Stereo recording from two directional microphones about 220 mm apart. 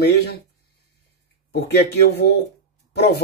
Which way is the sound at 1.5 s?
45° left (ahead or behind).